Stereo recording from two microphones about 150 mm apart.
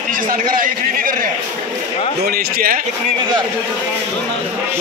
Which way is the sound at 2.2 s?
85° right.